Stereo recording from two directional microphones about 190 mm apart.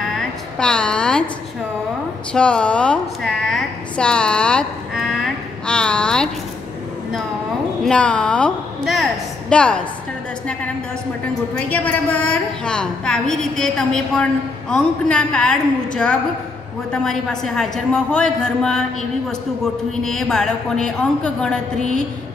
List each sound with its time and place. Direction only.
0.1 s a sound: 5° left (ahead or behind)
2.3 s a woman's voice: 5° left (ahead or behind)
7.8 s a woman's voice: 5° left (ahead or behind)
11.5 s a woman's voice: 10° left (ahead or behind)
20.0 s a woman's voice: centre (ahead or behind)